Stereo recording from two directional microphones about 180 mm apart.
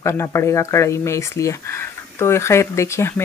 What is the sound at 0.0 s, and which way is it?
Speech, 15° left (ahead or behind).